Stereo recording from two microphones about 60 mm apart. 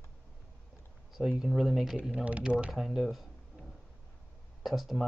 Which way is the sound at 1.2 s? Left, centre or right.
Centre.